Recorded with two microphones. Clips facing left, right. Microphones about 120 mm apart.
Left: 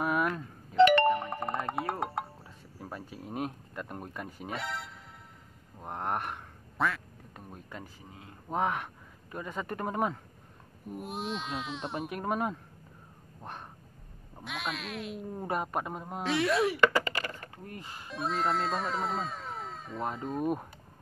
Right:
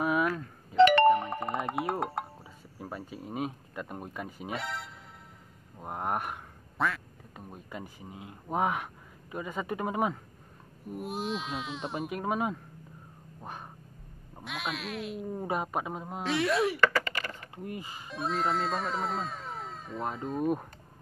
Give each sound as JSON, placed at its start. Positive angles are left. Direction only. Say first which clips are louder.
{"t": 0.0, "sound": "doorbell", "louder": "right 2 dB", "side_deg": 0}
{"t": 0.7, "sound": "a sound", "louder": "right 1 dB", "side_deg": -5}
{"t": 1.0, "sound": "music", "louder": "right 5 dB", "side_deg": -10}
{"t": 1.4, "sound": "a sound", "louder": "right 1 dB", "side_deg": 0}
{"t": 5.8, "sound": "quack", "louder": "right 1 dB", "side_deg": -5}
{"t": 7.8, "sound": "speech", "louder": "right 4 dB", "side_deg": -15}
{"t": 13.4, "sound": "a sound", "louder": "right 1 dB", "side_deg": -5}
{"t": 14.4, "sound": "speech", "louder": "right 1 dB", "side_deg": 0}
{"t": 17.0, "sound": "typing", "louder": "left 1 dB", "side_deg": 40}
{"t": 17.6, "sound": "speech", "louder": "right 5 dB", "side_deg": -5}